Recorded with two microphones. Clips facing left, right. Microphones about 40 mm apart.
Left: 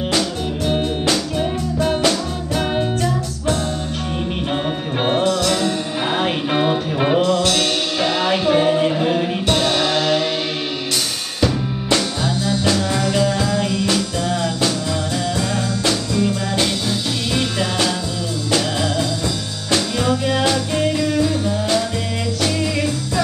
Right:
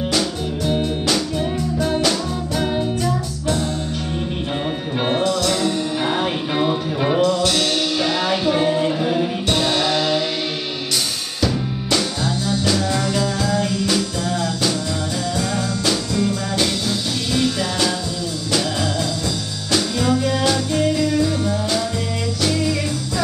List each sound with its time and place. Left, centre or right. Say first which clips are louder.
0.7 s music: left 1 dB; left
6.0 s music: left 1 dB; centre
7.2 s music: even; left
7.5 s music: even; centre
11.4 s music: left 2 dB; centre
16.1 s music: left 1 dB; left